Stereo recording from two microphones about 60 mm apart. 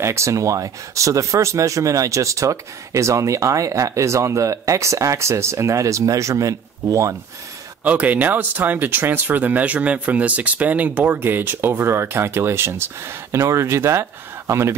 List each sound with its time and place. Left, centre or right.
0.0 s speech: right
7.8 s speech: right